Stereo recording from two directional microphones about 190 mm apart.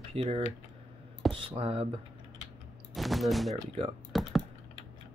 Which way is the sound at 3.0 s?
Centre (ahead or behind).